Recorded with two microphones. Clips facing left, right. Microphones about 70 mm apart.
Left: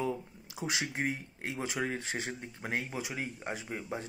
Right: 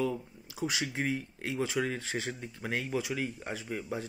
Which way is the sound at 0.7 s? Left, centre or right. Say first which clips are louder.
Even; left.